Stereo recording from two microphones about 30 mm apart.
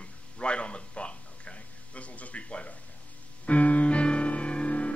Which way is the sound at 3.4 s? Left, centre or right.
Left.